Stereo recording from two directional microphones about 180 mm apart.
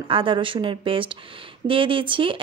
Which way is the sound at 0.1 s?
30° right (ahead or behind).